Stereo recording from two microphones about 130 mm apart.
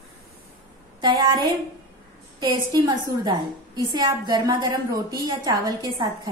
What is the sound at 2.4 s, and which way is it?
A woman's voice, 35° right (ahead or behind).